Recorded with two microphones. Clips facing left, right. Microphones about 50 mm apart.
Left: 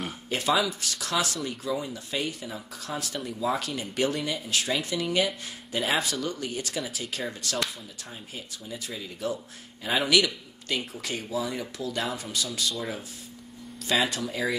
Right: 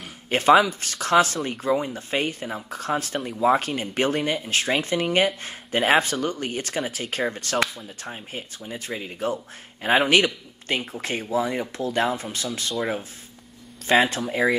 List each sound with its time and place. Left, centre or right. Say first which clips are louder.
0.3 s a man's voice: right 9 dB; right
13.8 s speech: right 6 dB; right